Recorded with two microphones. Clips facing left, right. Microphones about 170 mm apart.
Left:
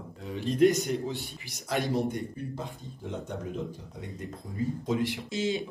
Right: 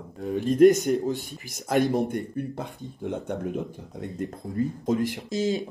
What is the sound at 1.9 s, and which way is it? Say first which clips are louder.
Speech: right 4 dB; 55° right (ahead or behind).